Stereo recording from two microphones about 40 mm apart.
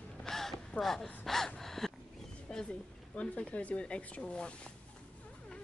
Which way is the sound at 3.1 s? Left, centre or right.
Left.